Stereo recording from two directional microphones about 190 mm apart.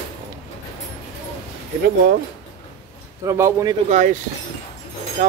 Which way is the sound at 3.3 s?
15° right (ahead or behind).